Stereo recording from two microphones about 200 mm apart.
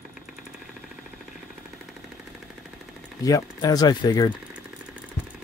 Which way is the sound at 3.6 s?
20° left (ahead or behind).